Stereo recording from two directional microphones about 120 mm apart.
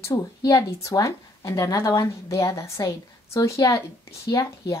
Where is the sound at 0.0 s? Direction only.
30° left (ahead or behind).